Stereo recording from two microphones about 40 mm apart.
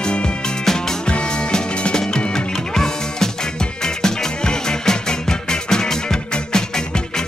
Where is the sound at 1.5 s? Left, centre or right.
Left.